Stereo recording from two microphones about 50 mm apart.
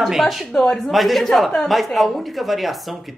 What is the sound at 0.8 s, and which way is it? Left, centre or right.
A woman's voice, centre.